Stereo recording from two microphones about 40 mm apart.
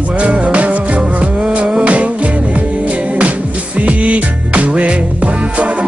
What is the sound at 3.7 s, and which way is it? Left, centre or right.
Music, right.